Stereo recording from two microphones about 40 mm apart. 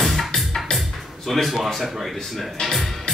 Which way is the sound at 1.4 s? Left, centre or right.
Centre.